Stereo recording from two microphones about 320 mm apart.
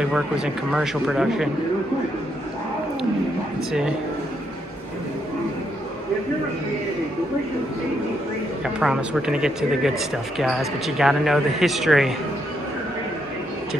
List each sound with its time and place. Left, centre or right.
0.1 s speech: centre
8.7 s speech: centre